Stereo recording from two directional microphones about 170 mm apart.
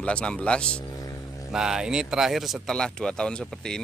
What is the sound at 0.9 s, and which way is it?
Vehicle, 20° left (ahead or behind).